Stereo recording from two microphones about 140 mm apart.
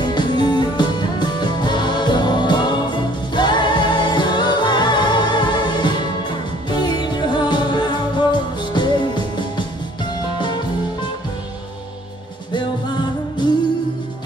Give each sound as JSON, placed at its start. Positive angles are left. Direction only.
{"t": 0.0, "sound": "music", "side_deg": 35}